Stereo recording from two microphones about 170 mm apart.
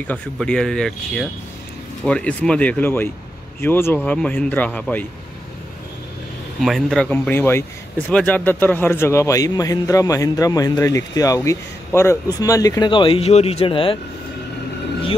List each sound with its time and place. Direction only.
0.0 s speech: 5° left (ahead or behind)
6.6 s a man's voice: centre (ahead or behind); by 13.9 s 30° left (ahead or behind)